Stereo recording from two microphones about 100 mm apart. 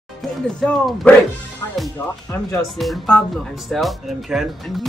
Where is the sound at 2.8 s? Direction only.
5° left (ahead or behind).